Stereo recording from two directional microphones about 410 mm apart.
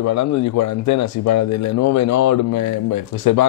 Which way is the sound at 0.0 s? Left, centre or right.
Left.